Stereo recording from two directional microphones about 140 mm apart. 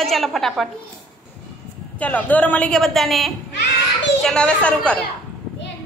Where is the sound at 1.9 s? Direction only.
10° left (ahead or behind).